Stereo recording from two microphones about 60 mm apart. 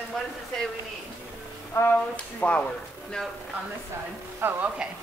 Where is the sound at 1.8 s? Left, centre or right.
Left.